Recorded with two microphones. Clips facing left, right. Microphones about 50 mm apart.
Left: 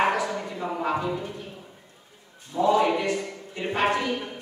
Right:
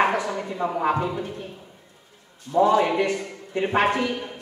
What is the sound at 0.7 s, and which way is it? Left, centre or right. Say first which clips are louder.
Speech: right 4 dB; right.